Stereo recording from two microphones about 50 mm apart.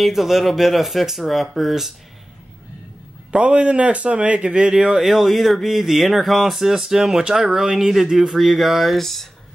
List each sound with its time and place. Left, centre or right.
0.0 s speech: centre
3.3 s speech: right
5.0 s speech: centre
8.9 s speech: centre